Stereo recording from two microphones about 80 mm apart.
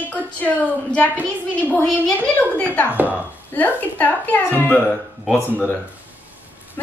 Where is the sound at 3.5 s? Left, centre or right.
Centre.